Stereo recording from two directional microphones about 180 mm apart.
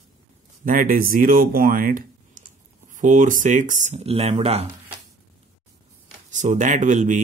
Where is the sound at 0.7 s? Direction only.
50° right (ahead or behind); by 4.6 s 35° right (ahead or behind).